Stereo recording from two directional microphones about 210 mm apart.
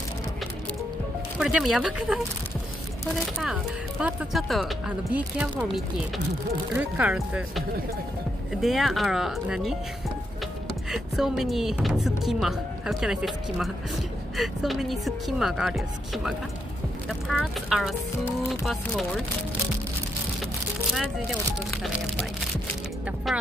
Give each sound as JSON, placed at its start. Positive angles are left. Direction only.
{"t": 1.4, "sound": "speech", "side_deg": 0}
{"t": 4.0, "sound": "speech", "side_deg": -5}
{"t": 10.9, "sound": "speech", "side_deg": 0}